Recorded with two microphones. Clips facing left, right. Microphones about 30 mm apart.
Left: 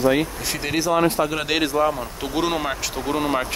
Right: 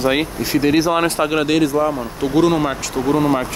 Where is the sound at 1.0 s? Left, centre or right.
Right.